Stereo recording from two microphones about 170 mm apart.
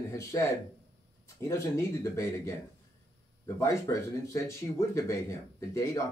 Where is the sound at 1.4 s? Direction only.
15° left (ahead or behind).